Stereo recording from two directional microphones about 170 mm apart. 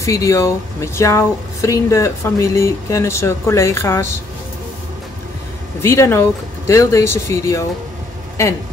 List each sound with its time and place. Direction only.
0.0 s speech: 20° left (ahead or behind)
5.8 s speech: 15° left (ahead or behind)